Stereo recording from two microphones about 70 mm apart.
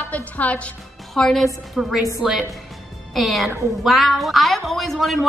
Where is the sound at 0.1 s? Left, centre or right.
Left.